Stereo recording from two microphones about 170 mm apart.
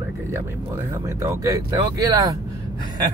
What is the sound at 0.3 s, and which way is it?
Speech, 15° right (ahead or behind).